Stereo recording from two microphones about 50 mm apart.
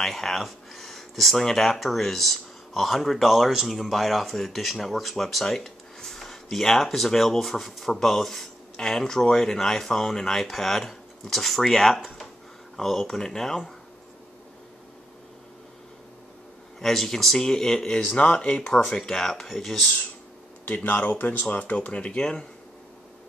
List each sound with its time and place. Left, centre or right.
0.0 s speech: centre
16.8 s speech: centre
18.1 s speech: left
18.9 s speech: centre
20.6 s speech: left